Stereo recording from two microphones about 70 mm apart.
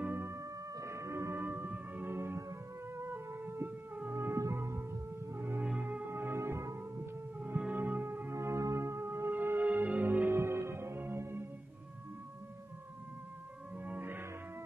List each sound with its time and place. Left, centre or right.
0.0 s music: right
0.4 s music: right
1.3 s music: right
7.3 s music: centre; by 9.3 s right
9.3 s music: right
13.8 s music: right